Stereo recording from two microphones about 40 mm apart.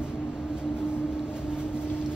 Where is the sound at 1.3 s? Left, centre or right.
Right.